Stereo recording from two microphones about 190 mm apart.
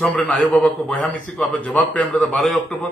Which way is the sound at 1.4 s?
5° left (ahead or behind).